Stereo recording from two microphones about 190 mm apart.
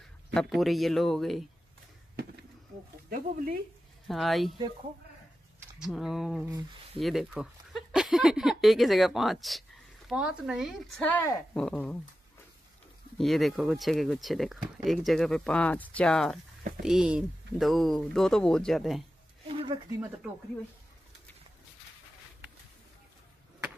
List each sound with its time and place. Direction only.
0.3 s speech: centre (ahead or behind)
3.1 s speech: 45° right (ahead or behind)
4.1 s speech: centre (ahead or behind)
5.8 s speech: centre (ahead or behind)
13.2 s speech: centre (ahead or behind)
19.4 s a sound: 30° right (ahead or behind)